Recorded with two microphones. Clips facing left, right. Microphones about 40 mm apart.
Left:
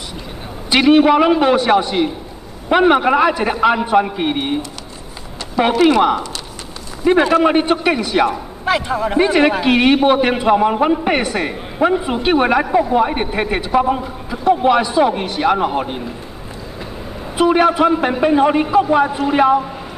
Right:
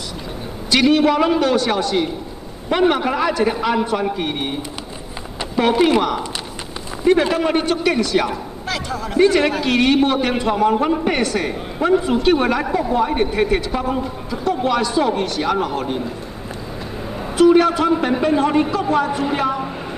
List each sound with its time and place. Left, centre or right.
0.7 s a man's voice: left
7.1 s a man's voice: centre
17.4 s a man's voice: centre